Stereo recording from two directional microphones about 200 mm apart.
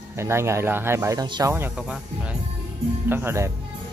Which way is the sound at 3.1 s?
10° right (ahead or behind).